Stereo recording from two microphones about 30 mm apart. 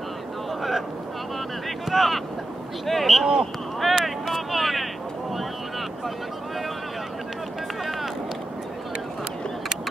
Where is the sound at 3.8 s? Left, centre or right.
Centre.